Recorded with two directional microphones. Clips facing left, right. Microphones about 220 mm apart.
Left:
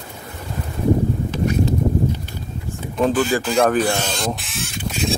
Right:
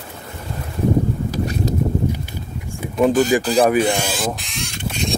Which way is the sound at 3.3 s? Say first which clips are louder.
Right 2 dB; 15° right (ahead or behind).